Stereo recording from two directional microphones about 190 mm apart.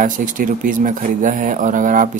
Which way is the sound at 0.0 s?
45° right (ahead or behind).